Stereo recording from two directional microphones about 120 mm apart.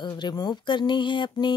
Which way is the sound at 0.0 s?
35° left (ahead or behind).